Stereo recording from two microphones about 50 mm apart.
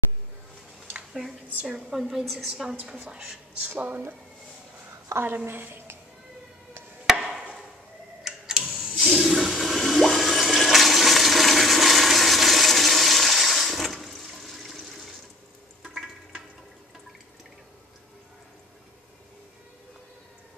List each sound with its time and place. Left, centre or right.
1.9 s a woman's voice: centre
3.6 s speech: right
5.2 s a woman's voice: right
7.1 s chop: centre
8.2 s tick-tock: centre
8.9 s toilet flush: centre
15.8 s a sound: centre